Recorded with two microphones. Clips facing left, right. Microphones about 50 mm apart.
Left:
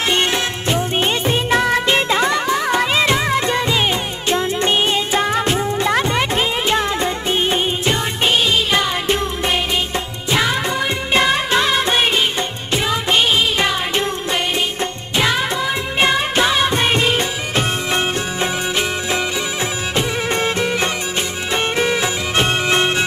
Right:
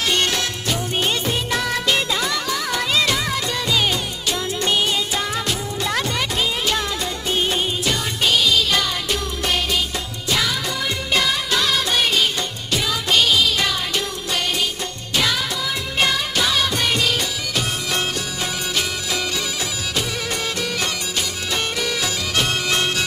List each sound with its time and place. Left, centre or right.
0.1 s music of bollywood: left
10.3 s music: left
15.1 s music: left